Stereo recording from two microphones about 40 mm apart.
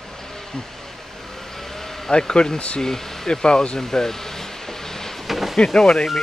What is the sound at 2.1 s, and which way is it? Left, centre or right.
Speech, left.